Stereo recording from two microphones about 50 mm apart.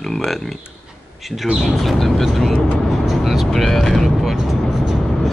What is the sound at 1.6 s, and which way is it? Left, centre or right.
Speech, centre.